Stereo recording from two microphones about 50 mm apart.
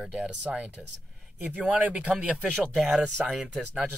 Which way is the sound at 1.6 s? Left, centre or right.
Right.